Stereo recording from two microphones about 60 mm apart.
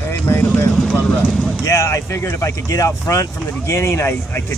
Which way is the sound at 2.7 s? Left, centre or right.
Left.